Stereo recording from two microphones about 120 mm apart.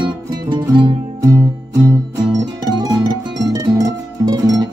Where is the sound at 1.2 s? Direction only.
25° right (ahead or behind).